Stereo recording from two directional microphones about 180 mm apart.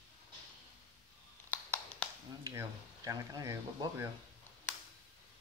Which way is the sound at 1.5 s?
10° left (ahead or behind).